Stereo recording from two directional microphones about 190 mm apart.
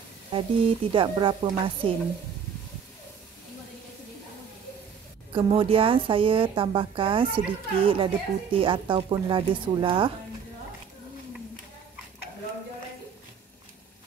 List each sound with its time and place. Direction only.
0.3 s a woman's voice: 25° right (ahead or behind)
5.3 s a woman's voice: 30° right (ahead or behind)